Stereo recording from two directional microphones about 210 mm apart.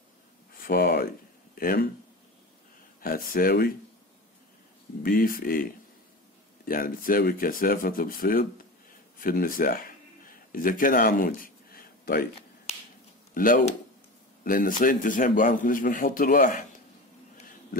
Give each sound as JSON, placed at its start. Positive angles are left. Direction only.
{"t": 0.6, "sound": "speech", "side_deg": 45}
{"t": 3.0, "sound": "speech", "side_deg": 45}
{"t": 5.0, "sound": "speech", "side_deg": 45}
{"t": 13.3, "sound": "a man's voice", "side_deg": 40}